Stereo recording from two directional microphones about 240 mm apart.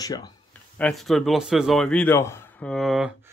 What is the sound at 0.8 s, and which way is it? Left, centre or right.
A man's voice, centre.